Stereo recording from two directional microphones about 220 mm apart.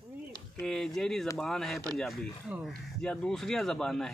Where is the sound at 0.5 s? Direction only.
5° left (ahead or behind).